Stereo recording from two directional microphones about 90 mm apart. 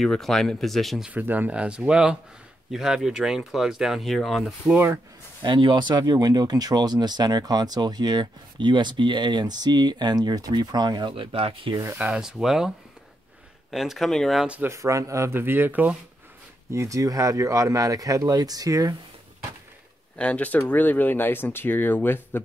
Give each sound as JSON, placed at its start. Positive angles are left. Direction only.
{"t": 0.0, "sound": "speech", "side_deg": 5}
{"t": 1.0, "sound": "speech", "side_deg": -20}
{"t": 5.4, "sound": "speech", "side_deg": -60}
{"t": 11.1, "sound": "speech", "side_deg": -85}
{"t": 12.0, "sound": "speech", "side_deg": -10}
{"t": 14.6, "sound": "speech", "side_deg": -35}
{"t": 16.7, "sound": "speech", "side_deg": -35}
{"t": 20.2, "sound": "speech", "side_deg": 15}